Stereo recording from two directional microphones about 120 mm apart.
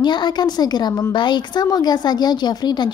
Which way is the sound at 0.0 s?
40° left (ahead or behind).